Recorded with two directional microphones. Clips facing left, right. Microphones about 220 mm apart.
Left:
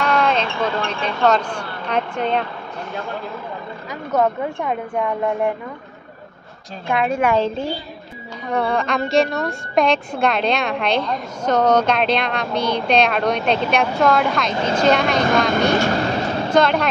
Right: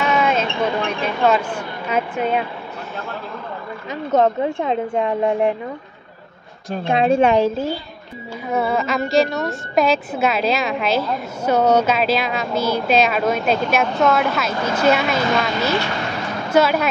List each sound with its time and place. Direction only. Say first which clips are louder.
0.0 s a sound: even; 5° right (ahead or behind)
0.6 s speech: right 2 dB; 15° right (ahead or behind)
3.9 s a woman's voice: right 2 dB; 25° right (ahead or behind)
6.8 s a woman's voice: right 4 dB; 25° right (ahead or behind)
7.3 s a woman's voice: right 2 dB; 5° right (ahead or behind)
15.7 s speech: left 4 dB; 45° left (ahead or behind)
16.5 s a woman's voice: right 1 dB; 5° right (ahead or behind)